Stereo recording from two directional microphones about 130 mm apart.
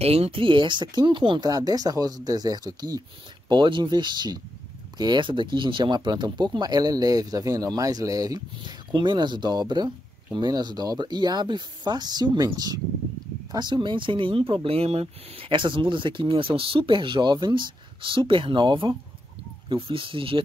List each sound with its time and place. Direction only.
0.0 s speech: 50° right (ahead or behind); by 12.4 s 30° right (ahead or behind)
13.5 s speech: 35° right (ahead or behind)